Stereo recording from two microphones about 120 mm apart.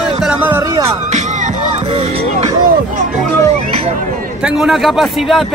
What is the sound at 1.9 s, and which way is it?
Speech, 45° right (ahead or behind).